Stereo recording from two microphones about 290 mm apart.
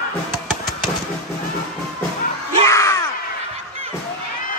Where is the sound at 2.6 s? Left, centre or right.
Centre.